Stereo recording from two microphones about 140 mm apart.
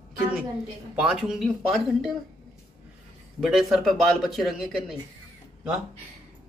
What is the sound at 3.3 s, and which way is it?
A man's voice, 5° right (ahead or behind).